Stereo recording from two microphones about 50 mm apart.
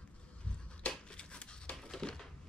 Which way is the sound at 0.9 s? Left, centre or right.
Centre.